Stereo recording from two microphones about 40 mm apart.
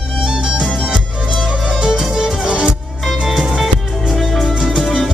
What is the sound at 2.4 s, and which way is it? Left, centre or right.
Music, right.